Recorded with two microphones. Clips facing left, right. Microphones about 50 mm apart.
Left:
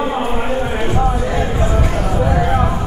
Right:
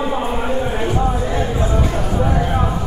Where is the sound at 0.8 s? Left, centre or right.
Left.